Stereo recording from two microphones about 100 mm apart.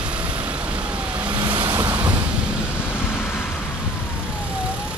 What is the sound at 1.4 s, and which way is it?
Vehicle, 50° right (ahead or behind).